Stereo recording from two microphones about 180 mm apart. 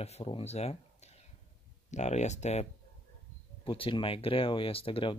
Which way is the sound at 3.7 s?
30° left (ahead or behind).